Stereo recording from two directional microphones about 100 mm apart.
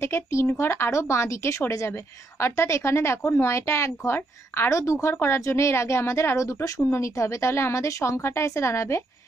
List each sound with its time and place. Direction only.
0.0 s a woman's voice: 30° left (ahead or behind)